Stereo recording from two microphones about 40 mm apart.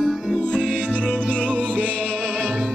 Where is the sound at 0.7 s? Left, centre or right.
Left.